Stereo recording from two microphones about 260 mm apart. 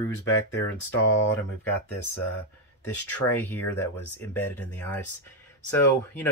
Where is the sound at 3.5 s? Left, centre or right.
Centre.